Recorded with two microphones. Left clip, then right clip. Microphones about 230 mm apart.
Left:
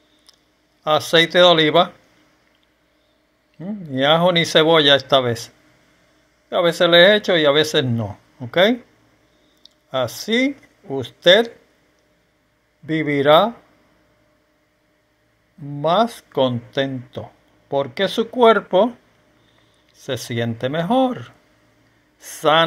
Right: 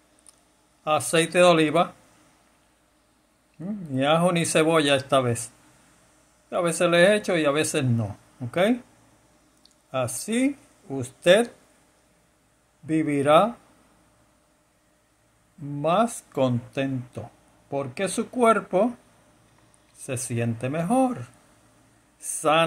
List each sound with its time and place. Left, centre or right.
0.8 s speech: centre
3.5 s speech: centre
6.5 s speech: centre
9.6 s a sound: centre
10.2 s speech: centre
12.8 s speech: centre
15.8 s speech: centre
20.2 s a man's voice: centre